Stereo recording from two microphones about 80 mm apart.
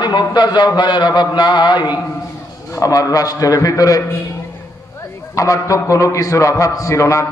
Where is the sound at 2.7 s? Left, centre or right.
Left.